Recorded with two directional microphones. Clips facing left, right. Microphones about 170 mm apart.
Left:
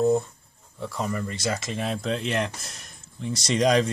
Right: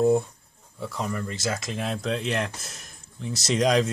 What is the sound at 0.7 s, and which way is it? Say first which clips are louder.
Speech: left 1 dB; centre (ahead or behind).